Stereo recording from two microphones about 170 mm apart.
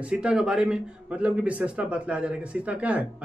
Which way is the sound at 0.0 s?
5° right (ahead or behind).